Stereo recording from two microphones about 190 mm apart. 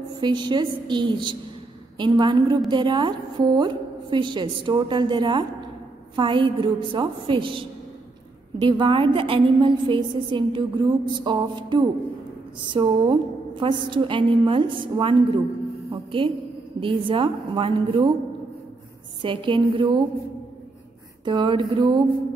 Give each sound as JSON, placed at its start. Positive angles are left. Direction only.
{"t": 0.2, "sound": "a woman's voice", "side_deg": -25}
{"t": 19.2, "sound": "a woman's voice", "side_deg": -25}
{"t": 21.2, "sound": "a woman's voice", "side_deg": -25}